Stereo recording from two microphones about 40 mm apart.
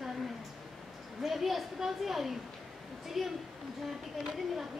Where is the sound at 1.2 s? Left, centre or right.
Centre.